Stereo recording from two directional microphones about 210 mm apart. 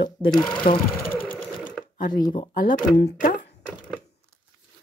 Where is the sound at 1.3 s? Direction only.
5° left (ahead or behind).